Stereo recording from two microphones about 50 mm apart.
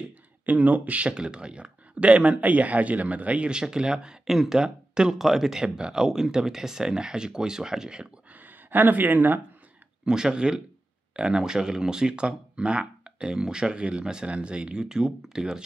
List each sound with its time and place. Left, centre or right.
0.5 s speech: right; by 8.1 s centre
8.3 s a sound: right
10.0 s speech: centre